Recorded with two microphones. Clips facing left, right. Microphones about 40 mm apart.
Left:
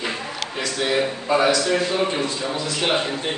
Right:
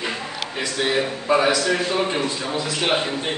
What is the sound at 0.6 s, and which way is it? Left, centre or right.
A man's voice, centre.